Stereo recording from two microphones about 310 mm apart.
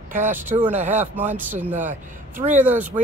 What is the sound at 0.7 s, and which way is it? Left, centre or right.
Speech, right.